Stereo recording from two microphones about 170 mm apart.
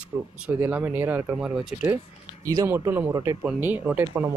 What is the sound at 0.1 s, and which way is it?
Speech, 10° right (ahead or behind).